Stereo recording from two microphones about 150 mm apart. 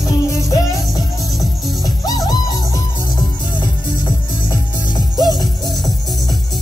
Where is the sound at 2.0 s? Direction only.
25° left (ahead or behind).